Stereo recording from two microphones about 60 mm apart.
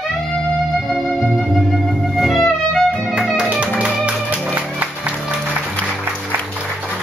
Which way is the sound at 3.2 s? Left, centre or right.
Centre.